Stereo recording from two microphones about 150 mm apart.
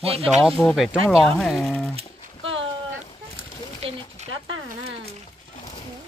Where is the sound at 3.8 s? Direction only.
45° right (ahead or behind).